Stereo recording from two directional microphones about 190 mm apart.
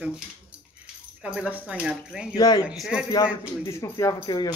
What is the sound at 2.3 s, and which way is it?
Speech, 20° left (ahead or behind).